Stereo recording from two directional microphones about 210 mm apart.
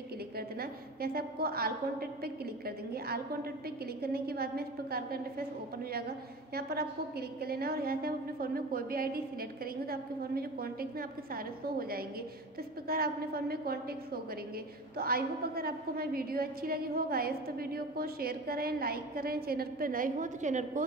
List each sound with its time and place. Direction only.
0.6 s a woman's voice: 45° right (ahead or behind)